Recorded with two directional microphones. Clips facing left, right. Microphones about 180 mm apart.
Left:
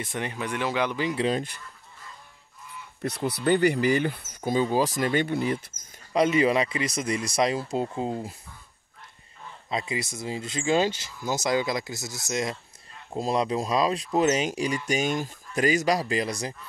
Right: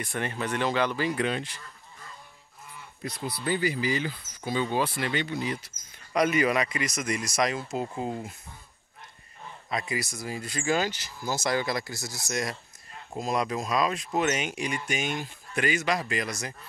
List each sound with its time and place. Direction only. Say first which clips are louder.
0.0 s speech: even; 15° left (ahead or behind)
3.0 s speech: left 6 dB; 65° left (ahead or behind)
4.4 s speech: left 4 dB; 35° left (ahead or behind); by 5.7 s 55° left (ahead or behind)
6.1 s speech: left 3 dB; 25° left (ahead or behind)
9.7 s speech: left 2 dB; 25° left (ahead or behind)